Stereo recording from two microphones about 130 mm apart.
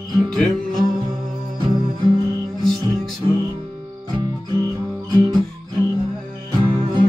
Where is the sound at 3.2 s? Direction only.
35° right (ahead or behind).